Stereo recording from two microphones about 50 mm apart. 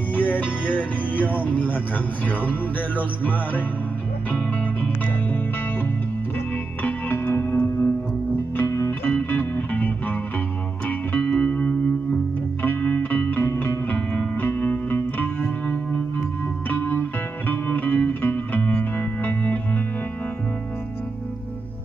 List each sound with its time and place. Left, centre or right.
0.1 s music: left
3.0 s music: left
6.8 s music: left
8.6 s music: left
9.0 s music: left
14.4 s music: left